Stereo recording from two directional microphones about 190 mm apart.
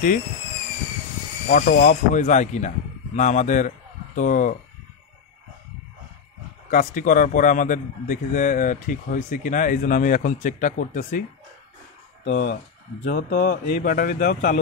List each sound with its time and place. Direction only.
1.5 s speech: 45° left (ahead or behind)
6.7 s a man's voice: 40° left (ahead or behind)
12.3 s a man's voice: 45° left (ahead or behind)